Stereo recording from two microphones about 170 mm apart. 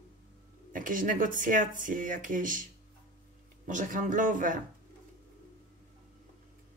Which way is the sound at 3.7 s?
50° right (ahead or behind).